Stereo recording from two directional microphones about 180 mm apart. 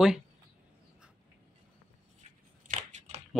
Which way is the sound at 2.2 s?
40° right (ahead or behind).